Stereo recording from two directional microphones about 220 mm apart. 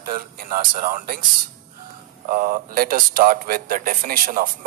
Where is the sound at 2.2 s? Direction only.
40° right (ahead or behind).